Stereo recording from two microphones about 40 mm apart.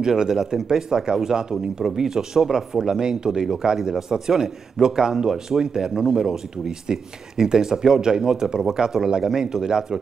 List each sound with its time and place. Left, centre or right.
0.0 s speech: centre